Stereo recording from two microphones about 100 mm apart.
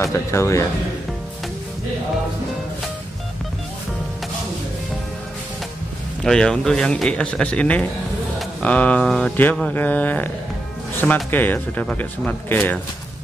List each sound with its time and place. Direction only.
0.0 s speech: 30° left (ahead or behind)
6.2 s speech: 5° left (ahead or behind)